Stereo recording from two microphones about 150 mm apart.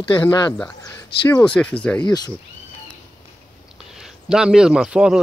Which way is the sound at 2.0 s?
25° left (ahead or behind).